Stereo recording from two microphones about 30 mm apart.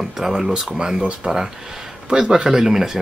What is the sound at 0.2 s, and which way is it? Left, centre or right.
Speech, centre.